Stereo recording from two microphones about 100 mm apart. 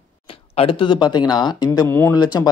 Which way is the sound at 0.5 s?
60° left (ahead or behind).